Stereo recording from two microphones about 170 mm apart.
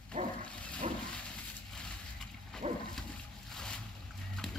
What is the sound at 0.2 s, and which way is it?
Dog, 35° right (ahead or behind).